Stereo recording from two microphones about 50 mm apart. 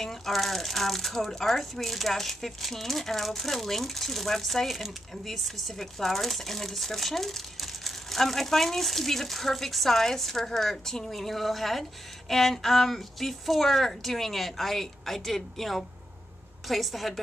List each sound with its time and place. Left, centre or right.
0.0 s speech: centre